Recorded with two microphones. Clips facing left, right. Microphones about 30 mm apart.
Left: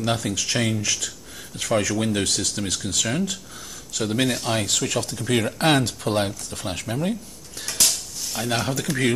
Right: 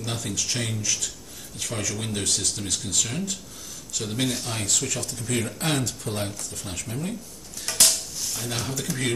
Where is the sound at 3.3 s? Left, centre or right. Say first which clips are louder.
Left 2 dB; left.